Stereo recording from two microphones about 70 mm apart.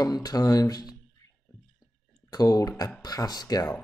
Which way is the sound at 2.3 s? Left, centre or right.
Left.